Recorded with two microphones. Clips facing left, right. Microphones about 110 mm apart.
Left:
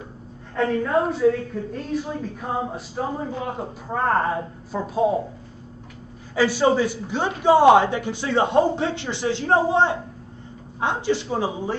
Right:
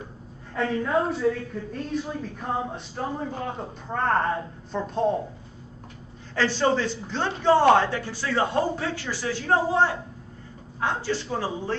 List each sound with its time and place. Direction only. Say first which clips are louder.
0.6 s a woman's voice: left 3 dB; 5° left (ahead or behind)
6.3 s a man's voice: left 4 dB; 10° left (ahead or behind)